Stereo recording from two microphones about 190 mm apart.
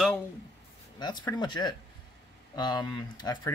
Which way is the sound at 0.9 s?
20° left (ahead or behind).